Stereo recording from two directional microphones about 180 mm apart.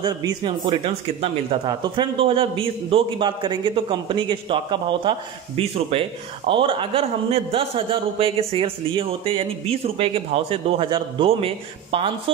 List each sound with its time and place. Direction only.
0.0 s speech: 20° right (ahead or behind)